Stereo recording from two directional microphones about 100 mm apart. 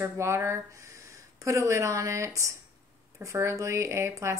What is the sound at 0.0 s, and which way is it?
Speech, 25° right (ahead or behind).